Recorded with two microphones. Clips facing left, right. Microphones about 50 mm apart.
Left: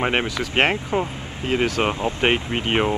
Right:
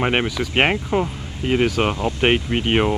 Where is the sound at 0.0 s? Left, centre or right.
Centre.